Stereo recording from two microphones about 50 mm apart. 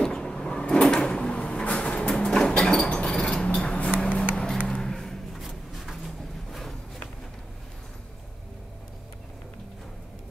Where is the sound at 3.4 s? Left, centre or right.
Left.